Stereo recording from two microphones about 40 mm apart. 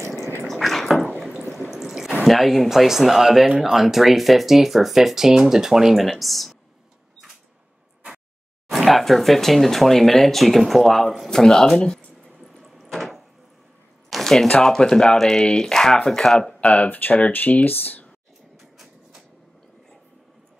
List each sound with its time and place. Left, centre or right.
0.5 s drip: centre
1.7 s water: centre
2.2 s speech: centre
6.0 s speech: centre
8.6 s speech: centre
12.6 s a sound: centre
14.6 s speech: centre
16.7 s speech: left